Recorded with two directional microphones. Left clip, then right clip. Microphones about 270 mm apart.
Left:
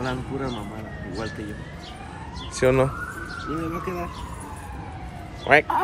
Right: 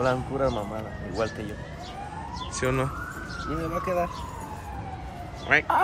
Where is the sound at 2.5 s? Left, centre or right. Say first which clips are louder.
Left 8 dB; centre.